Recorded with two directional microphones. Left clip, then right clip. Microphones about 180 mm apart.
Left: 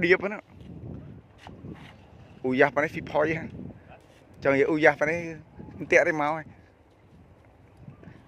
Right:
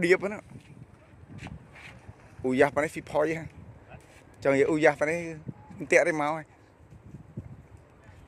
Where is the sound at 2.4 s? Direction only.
10° right (ahead or behind).